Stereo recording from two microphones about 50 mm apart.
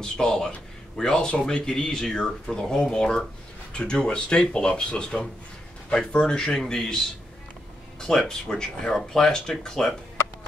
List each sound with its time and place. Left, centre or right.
0.0 s speech: centre
8.1 s speech: centre